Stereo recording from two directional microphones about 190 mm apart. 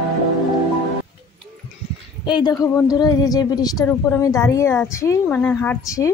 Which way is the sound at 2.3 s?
25° left (ahead or behind).